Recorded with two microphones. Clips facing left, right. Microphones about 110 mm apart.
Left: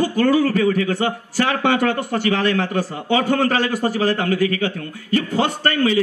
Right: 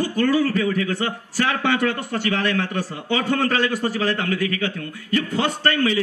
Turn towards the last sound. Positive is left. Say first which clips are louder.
# left 2 dB
turn(degrees=35)  # may be behind; listen again after turning